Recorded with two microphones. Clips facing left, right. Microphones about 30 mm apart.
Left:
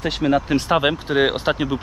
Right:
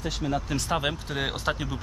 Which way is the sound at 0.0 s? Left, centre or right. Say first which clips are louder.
Left 10 dB; left.